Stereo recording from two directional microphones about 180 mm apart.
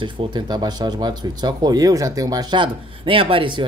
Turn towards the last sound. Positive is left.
turn(degrees=-30)  # may be behind; listen again after turning